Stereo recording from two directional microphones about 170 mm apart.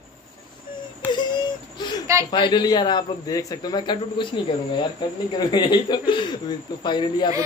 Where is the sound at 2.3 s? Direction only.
25° left (ahead or behind).